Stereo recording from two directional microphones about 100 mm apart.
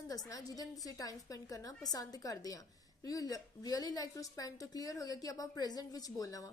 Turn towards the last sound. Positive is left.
turn(degrees=40)  # may be behind; listen again after turning